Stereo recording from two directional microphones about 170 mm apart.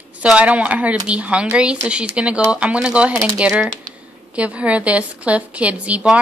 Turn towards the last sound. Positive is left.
turn(degrees=-10)  # may be behind; listen again after turning